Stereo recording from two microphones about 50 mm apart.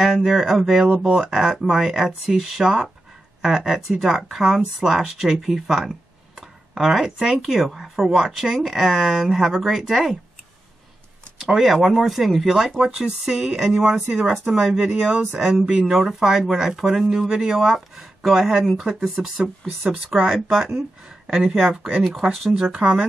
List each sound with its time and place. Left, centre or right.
0.0 s speech: centre
6.4 s a sound: centre
7.4 s speech: centre
11.3 s speech: centre
13.2 s speech: centre
15.9 s speech: centre
22.7 s speech: centre